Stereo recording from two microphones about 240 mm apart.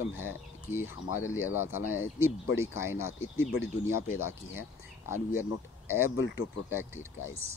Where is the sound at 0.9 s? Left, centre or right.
Left.